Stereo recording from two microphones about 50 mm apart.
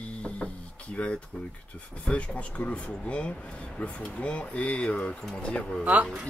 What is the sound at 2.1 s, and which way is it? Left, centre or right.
Speech, left.